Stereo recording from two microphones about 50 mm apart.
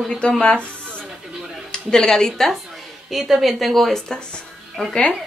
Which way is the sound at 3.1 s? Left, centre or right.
Centre.